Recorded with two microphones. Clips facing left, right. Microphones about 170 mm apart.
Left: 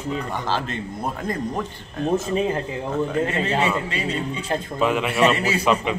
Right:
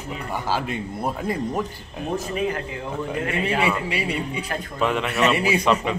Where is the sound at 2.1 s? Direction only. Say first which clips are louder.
Left 3 dB; 25° left (ahead or behind).